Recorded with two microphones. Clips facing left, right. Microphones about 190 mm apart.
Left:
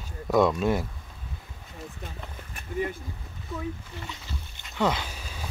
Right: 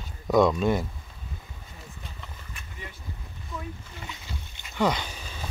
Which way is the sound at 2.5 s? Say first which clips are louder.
Left 17 dB; 50° left (ahead or behind).